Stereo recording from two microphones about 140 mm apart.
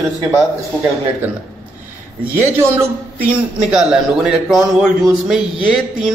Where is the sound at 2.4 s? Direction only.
15° right (ahead or behind).